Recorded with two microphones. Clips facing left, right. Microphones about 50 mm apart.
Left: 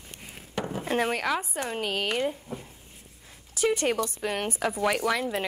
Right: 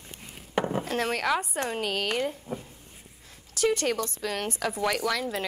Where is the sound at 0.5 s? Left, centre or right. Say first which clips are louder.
Right 5 dB; right.